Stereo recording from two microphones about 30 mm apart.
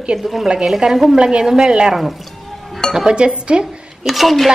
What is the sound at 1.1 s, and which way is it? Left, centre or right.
Speech, right.